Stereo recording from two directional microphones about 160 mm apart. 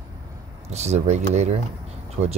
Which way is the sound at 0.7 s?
45° right (ahead or behind).